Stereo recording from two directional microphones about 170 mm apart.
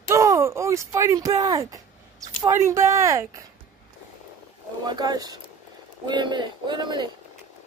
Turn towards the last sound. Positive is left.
turn(degrees=-25)  # may be behind; listen again after turning